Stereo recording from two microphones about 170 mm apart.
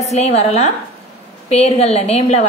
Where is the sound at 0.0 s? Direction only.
40° left (ahead or behind).